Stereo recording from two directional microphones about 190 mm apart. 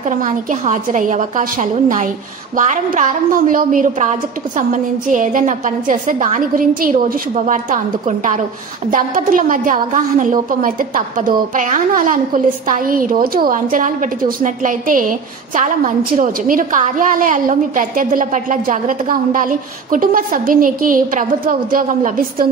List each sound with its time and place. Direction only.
0.0 s a woman's voice: 40° right (ahead or behind)
5.1 s a woman's voice: 45° right (ahead or behind)